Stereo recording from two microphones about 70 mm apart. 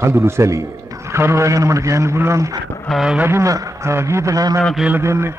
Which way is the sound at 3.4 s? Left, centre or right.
Right.